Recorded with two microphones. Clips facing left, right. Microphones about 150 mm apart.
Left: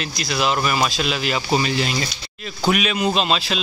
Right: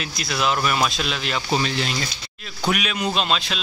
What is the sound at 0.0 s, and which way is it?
A man's voice, centre (ahead or behind).